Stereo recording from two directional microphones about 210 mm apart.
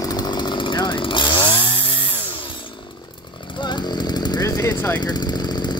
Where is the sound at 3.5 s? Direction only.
20° left (ahead or behind).